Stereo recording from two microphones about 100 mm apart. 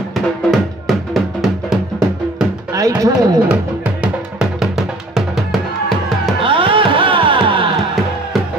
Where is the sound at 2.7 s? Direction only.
35° right (ahead or behind).